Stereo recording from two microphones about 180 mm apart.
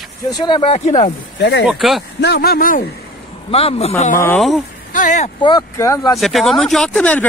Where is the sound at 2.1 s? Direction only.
65° left (ahead or behind).